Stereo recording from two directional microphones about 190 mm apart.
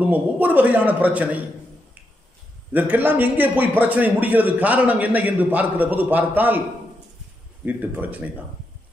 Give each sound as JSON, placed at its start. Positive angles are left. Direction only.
{"t": 0.0, "sound": "a man's voice", "side_deg": -10}
{"t": 2.7, "sound": "a man's voice", "side_deg": -10}
{"t": 7.6, "sound": "a man's voice", "side_deg": -10}